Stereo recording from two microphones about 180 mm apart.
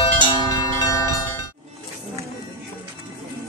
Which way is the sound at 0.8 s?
20° left (ahead or behind).